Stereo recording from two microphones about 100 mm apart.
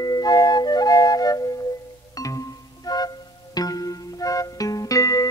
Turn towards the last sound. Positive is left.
turn(degrees=35)  # may be behind; listen again after turning